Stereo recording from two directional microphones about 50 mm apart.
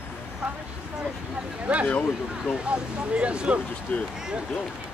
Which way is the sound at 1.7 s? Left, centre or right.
Centre.